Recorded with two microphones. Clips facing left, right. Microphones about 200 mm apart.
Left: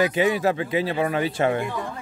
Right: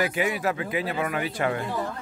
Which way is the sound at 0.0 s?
25° left (ahead or behind).